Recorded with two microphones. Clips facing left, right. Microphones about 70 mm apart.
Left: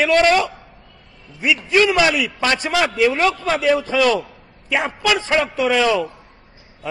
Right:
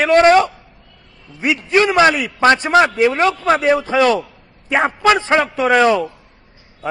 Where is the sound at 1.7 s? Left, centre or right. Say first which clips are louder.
Right 3 dB; right.